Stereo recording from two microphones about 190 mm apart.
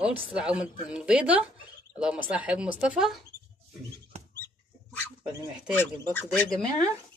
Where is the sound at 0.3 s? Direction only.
5° right (ahead or behind).